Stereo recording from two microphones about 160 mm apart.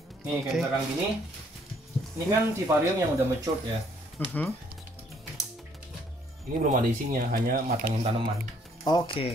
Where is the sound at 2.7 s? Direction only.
15° right (ahead or behind).